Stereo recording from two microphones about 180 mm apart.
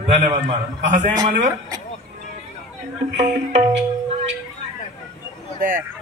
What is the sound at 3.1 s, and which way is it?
Music, 40° right (ahead or behind).